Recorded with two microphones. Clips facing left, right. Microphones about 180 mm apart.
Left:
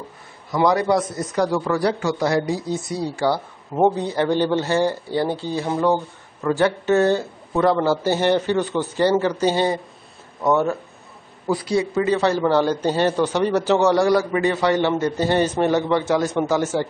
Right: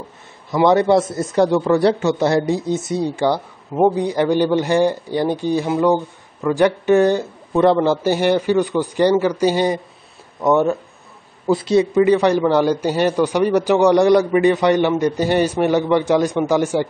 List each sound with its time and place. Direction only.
0.7 s a man's voice: 25° right (ahead or behind)